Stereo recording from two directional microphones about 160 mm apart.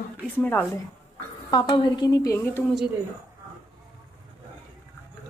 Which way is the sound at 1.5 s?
30° left (ahead or behind).